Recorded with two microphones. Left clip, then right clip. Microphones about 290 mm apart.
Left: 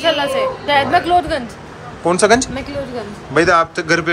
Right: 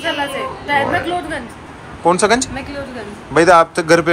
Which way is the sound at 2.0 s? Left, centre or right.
Centre.